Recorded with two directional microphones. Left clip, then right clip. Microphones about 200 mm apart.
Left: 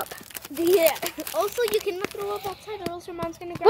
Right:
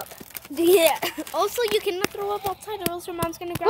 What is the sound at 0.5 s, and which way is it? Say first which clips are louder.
Speech: right 2 dB; 55° right (ahead or behind).